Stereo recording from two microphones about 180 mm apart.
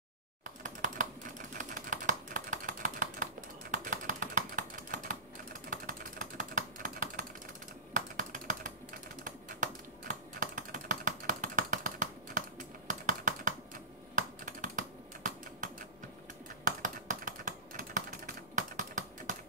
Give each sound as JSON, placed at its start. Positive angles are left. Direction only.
{"t": 0.4, "sound": "typing", "side_deg": -45}
{"t": 1.6, "sound": "a sound", "side_deg": -45}
{"t": 3.7, "sound": "typing", "side_deg": -45}